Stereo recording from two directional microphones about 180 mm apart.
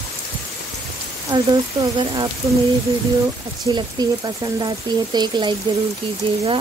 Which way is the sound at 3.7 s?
20° right (ahead or behind).